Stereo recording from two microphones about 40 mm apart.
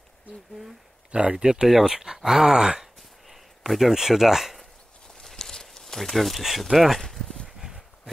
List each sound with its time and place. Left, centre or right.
1.1 s speech: right
1.7 s speech: centre
3.3 s a sound: centre
5.0 s a sound: centre
7.0 s dog: centre
7.4 s horse: centre